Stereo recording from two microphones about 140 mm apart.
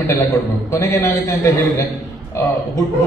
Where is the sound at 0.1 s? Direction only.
20° left (ahead or behind).